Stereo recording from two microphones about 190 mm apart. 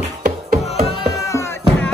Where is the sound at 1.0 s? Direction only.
15° left (ahead or behind).